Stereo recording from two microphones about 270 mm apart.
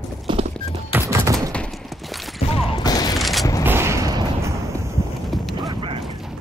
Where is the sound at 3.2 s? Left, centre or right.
Centre.